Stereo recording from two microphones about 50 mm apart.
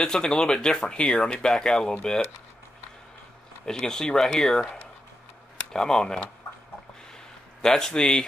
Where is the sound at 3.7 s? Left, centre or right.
Centre.